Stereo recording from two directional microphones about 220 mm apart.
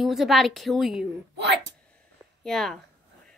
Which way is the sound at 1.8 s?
5° left (ahead or behind).